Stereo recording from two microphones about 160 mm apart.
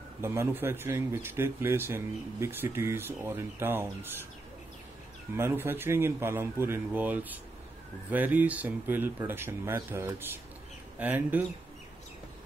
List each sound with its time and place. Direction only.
0.2 s speech: 15° right (ahead or behind)
5.3 s speech: 15° right (ahead or behind)